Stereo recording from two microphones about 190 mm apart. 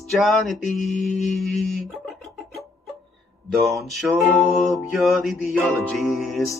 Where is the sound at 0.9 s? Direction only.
40° left (ahead or behind).